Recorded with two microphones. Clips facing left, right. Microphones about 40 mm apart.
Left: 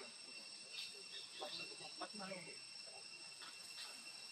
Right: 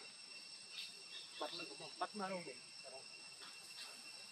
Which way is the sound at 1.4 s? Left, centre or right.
Centre.